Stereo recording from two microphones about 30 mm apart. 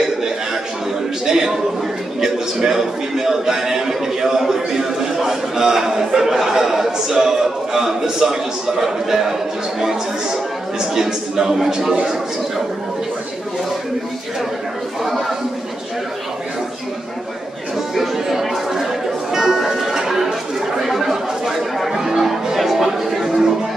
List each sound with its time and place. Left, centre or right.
1.2 s a sound: centre
2.1 s a man's voice: centre
11.0 s speech: centre
15.0 s speech: centre
17.9 s speech: centre
19.3 s music: centre
20.7 s chatter: centre
21.9 s music: centre
23.2 s music: centre